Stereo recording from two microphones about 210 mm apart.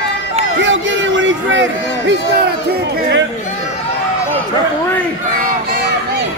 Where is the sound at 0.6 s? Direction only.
65° right (ahead or behind).